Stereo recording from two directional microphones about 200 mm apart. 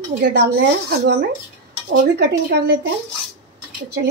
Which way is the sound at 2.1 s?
55° right (ahead or behind).